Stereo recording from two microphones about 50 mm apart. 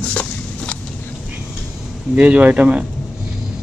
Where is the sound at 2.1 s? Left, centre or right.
Right.